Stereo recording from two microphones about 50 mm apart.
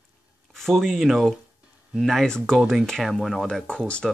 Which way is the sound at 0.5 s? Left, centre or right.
Centre.